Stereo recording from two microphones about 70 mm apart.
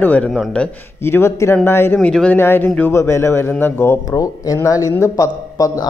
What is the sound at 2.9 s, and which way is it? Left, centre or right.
A man's voice, left.